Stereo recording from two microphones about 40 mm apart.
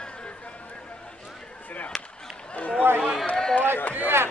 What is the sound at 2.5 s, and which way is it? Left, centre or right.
Speech, left.